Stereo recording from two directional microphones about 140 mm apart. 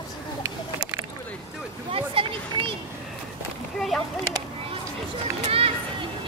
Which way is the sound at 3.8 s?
5° left (ahead or behind).